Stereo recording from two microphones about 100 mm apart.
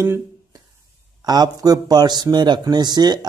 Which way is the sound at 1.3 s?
40° right (ahead or behind).